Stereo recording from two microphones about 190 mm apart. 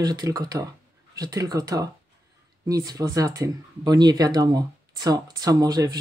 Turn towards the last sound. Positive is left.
turn(degrees=-20)  # may be behind; listen again after turning